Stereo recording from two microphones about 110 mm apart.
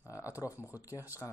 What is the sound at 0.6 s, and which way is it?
Speech, 15° right (ahead or behind).